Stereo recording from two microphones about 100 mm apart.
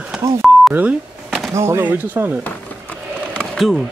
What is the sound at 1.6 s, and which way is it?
Speech, 25° right (ahead or behind).